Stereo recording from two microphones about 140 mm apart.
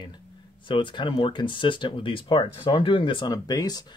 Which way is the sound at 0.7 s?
35° left (ahead or behind).